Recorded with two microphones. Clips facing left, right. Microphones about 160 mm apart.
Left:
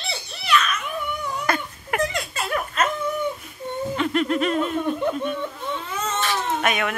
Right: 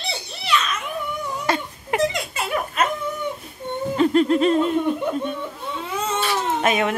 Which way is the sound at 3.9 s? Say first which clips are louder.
Right 6 dB; 35° right (ahead or behind).